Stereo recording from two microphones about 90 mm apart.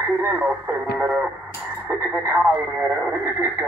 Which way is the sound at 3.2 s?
25° right (ahead or behind).